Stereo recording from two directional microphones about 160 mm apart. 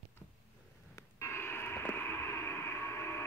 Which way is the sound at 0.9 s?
15° left (ahead or behind).